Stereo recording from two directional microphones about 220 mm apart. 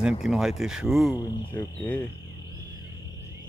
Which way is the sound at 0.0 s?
Centre (ahead or behind).